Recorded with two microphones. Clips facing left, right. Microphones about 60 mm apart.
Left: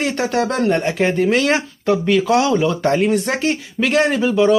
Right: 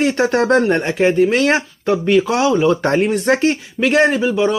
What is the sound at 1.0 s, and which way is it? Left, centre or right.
Speech, centre.